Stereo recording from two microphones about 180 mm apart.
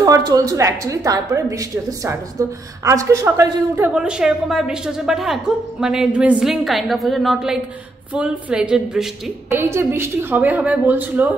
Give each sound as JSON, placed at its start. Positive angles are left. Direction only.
{"t": 0.0, "sound": "a woman's voice", "side_deg": -20}
{"t": 9.5, "sound": "a woman's voice", "side_deg": -15}